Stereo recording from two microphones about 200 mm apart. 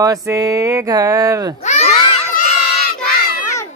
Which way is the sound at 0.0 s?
15° right (ahead or behind).